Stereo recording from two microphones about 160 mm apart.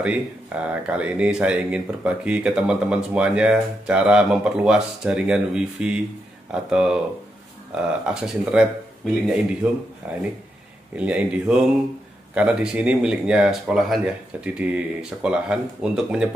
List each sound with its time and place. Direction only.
0.0 s speech: 10° right (ahead or behind)
8.0 s speech: 5° right (ahead or behind)